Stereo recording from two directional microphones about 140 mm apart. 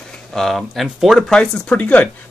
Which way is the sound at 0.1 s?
5° left (ahead or behind).